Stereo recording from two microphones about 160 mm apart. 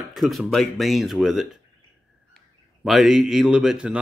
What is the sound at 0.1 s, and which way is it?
A man's voice, centre (ahead or behind).